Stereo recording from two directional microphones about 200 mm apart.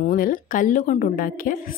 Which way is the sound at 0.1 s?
45° left (ahead or behind).